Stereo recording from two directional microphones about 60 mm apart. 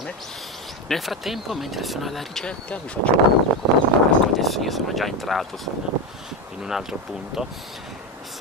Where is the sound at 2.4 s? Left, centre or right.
Left.